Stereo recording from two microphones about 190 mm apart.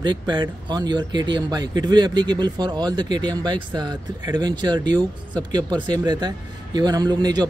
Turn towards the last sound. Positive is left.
turn(degrees=-20)  # may be behind; listen again after turning